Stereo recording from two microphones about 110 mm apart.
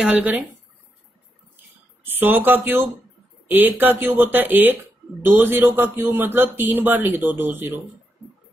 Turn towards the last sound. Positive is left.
turn(degrees=-20)  # may be behind; listen again after turning